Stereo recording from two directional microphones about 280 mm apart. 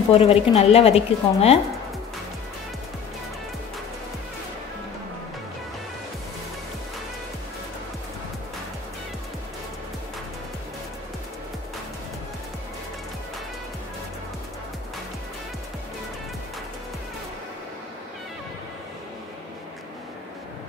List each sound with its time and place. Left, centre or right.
0.1 s speech: left